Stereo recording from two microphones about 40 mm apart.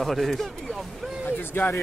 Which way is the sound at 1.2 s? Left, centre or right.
Left.